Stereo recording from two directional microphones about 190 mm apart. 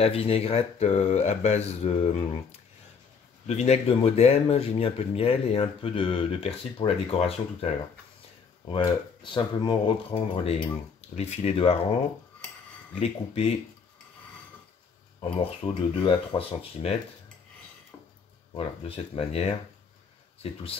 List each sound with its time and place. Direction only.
0.0 s speech: 30° left (ahead or behind)
3.4 s speech: 35° left (ahead or behind)
8.7 s speech: 25° left (ahead or behind)
13.0 s speech: 35° left (ahead or behind)
15.2 s speech: 25° left (ahead or behind)
18.5 s speech: 30° left (ahead or behind)